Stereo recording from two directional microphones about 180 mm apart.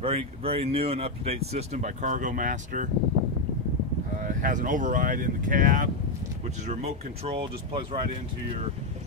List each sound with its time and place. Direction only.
0.0 s speech: 30° right (ahead or behind)
4.2 s speech: 45° right (ahead or behind)
6.7 s speech: 35° right (ahead or behind)